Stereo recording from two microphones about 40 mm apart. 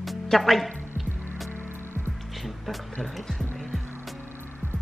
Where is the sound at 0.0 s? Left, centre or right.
Centre.